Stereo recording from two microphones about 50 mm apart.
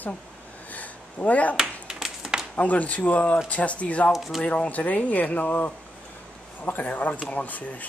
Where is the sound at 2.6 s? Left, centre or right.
Left.